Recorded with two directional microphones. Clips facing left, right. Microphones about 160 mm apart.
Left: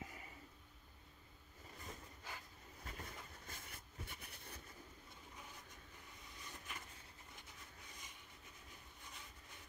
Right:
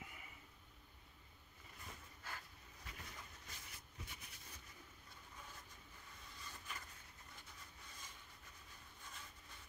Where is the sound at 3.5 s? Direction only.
55° left (ahead or behind).